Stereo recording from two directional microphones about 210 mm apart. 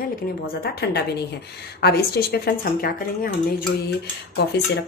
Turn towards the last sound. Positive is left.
turn(degrees=50)  # may be behind; listen again after turning